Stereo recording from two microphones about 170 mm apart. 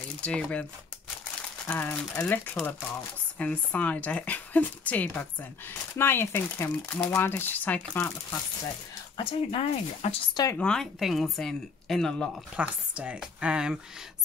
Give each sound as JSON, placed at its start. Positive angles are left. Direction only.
{"t": 0.2, "sound": "speech", "side_deg": 5}
{"t": 1.7, "sound": "speech", "side_deg": 10}
{"t": 9.1, "sound": "speech", "side_deg": 35}
{"t": 10.3, "sound": "speech", "side_deg": 20}
{"t": 10.6, "sound": "speech", "side_deg": 5}